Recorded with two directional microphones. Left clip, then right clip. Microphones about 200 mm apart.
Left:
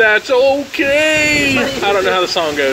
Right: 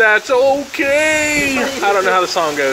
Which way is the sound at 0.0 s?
30° left (ahead or behind).